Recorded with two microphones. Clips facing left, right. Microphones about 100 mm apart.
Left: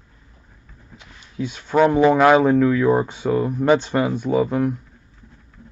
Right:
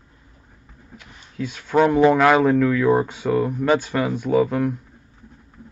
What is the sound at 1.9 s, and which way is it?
Speech, 5° left (ahead or behind).